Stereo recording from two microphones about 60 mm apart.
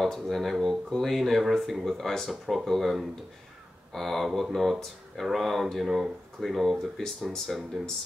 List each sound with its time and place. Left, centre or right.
0.0 s speech: centre